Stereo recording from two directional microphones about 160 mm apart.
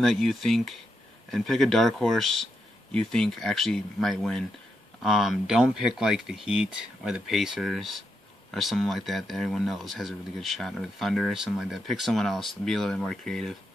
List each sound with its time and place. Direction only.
0.0 s speech: centre (ahead or behind)